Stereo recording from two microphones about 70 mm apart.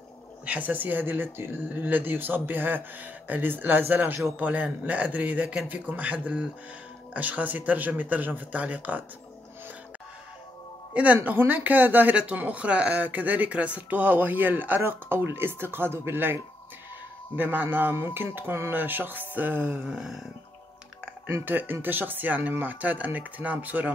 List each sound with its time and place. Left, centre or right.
0.5 s speech: right
10.9 s speech: centre
17.4 s speech: right
19.9 s a sound: centre
21.5 s speech: right